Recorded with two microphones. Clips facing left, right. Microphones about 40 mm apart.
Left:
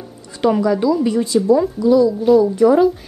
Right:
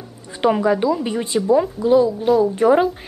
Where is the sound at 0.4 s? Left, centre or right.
Right.